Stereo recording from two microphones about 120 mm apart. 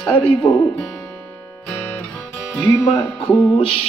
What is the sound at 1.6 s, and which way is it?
Music, 10° left (ahead or behind).